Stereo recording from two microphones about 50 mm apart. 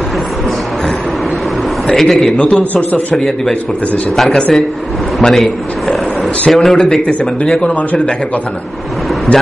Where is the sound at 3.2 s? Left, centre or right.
Centre.